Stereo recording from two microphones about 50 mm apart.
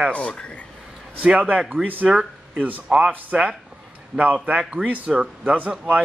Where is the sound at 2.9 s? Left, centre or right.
Right.